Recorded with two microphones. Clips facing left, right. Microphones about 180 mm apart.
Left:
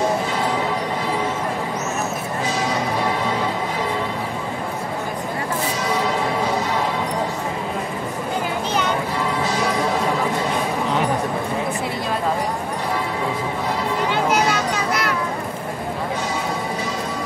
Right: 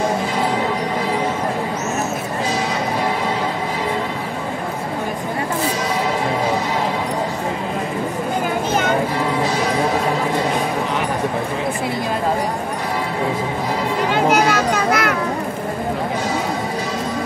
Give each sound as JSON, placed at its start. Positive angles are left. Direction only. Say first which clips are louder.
{"t": 14.3, "sound": "children playing", "louder": "right 4 dB", "side_deg": -50}